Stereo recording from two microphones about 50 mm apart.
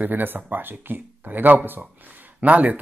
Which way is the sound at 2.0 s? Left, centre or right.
Right.